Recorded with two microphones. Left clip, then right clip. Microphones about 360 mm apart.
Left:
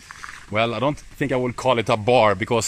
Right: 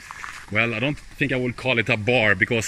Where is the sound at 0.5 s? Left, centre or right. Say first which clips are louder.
Left 2 dB; centre.